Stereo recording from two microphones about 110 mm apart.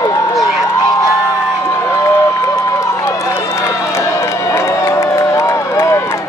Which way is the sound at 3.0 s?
25° left (ahead or behind).